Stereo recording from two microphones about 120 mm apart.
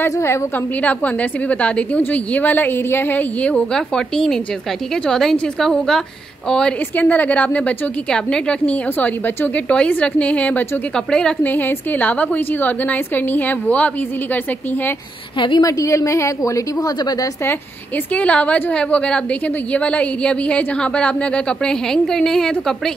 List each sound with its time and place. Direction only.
0.0 s a woman's voice: 20° left (ahead or behind)
15.3 s a woman's voice: 40° left (ahead or behind)
15.6 s a woman's voice: 25° left (ahead or behind)
18.1 s a woman's voice: 10° left (ahead or behind)